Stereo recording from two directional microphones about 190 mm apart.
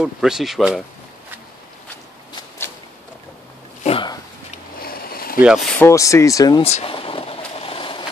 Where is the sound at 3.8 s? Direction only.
30° left (ahead or behind).